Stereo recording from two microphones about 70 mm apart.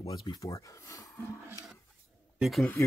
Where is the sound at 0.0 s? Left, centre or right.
Left.